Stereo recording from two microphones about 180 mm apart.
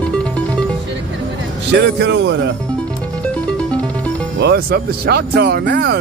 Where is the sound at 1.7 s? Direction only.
65° right (ahead or behind).